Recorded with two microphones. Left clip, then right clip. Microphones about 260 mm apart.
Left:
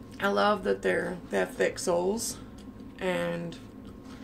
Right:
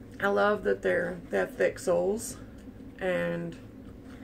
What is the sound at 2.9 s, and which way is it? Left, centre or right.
Speech, centre.